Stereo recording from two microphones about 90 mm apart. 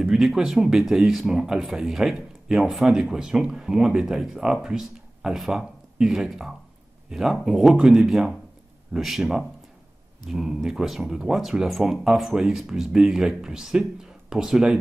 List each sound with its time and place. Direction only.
0.0 s speech: 5° right (ahead or behind)